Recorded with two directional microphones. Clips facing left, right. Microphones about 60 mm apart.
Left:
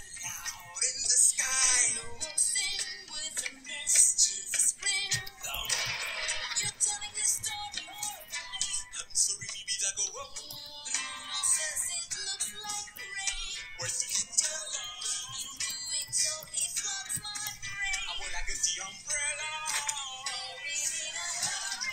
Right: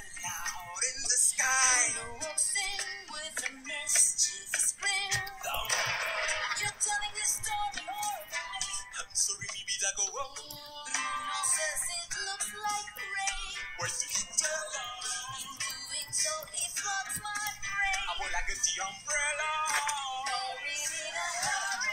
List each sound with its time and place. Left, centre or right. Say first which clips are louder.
0.4 s music: right 4 dB; right
4.5 s music: right 4 dB; right
10.9 s music: right 7 dB; right